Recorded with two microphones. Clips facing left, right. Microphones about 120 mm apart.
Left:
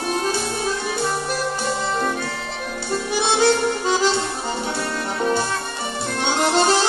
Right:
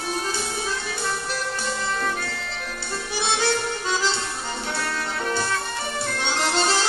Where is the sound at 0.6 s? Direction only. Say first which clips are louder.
Left 5 dB; 20° left (ahead or behind).